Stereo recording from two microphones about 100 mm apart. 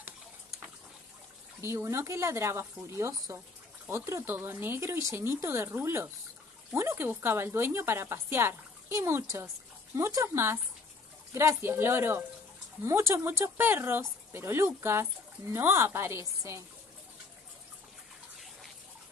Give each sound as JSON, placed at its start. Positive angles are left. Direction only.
{"t": 1.6, "sound": "speech", "side_deg": -25}